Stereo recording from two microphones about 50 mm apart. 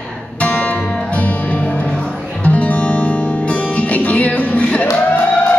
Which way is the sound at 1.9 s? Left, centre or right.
Centre.